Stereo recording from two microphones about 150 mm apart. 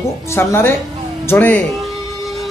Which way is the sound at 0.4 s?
15° left (ahead or behind).